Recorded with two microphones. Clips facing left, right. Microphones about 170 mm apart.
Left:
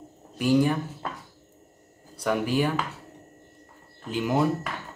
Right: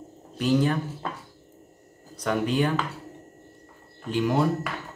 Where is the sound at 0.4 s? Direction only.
10° left (ahead or behind).